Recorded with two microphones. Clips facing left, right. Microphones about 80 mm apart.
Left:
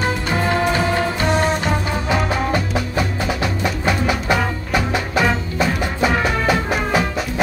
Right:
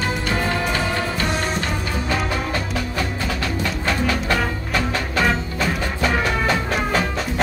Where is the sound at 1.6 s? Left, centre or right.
Left.